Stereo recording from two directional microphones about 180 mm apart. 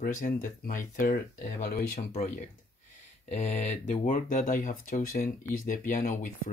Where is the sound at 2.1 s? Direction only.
35° left (ahead or behind).